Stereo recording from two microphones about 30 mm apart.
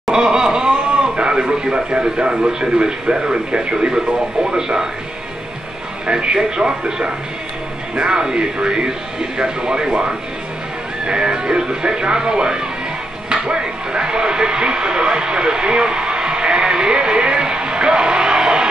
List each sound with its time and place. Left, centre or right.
0.1 s a sound: right
1.1 s radio: right
2.2 s speech: right
6.2 s speech: right
7.9 s speech: right
8.2 s speech: right